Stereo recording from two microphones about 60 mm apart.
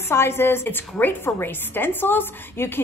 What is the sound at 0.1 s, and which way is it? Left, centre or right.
A woman's voice, left.